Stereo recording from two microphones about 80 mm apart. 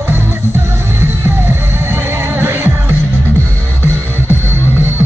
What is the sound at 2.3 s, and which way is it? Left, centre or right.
Music, right.